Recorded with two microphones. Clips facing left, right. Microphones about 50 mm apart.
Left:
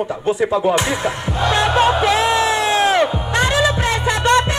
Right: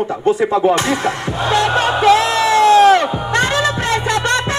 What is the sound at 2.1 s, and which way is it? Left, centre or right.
Music, left.